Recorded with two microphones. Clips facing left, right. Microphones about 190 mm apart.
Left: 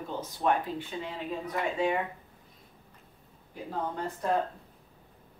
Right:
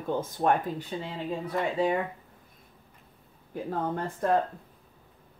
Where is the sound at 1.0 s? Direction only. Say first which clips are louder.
Right 2 dB; 35° right (ahead or behind).